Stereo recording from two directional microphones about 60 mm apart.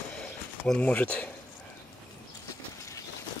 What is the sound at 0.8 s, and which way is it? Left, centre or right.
Speech, left.